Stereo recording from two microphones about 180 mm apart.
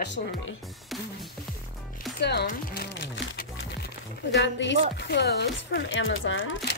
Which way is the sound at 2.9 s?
90° left.